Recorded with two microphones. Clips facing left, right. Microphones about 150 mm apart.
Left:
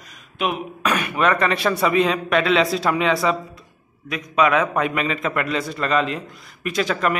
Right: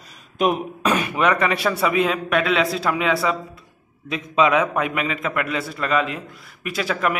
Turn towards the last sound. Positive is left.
turn(degrees=-5)  # may be behind; listen again after turning